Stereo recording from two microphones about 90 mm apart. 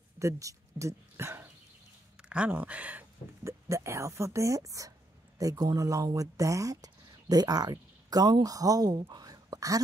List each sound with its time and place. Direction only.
0.2 s speech: 35° right (ahead or behind)
2.2 s speech: 10° right (ahead or behind)
3.4 s speech: 30° right (ahead or behind)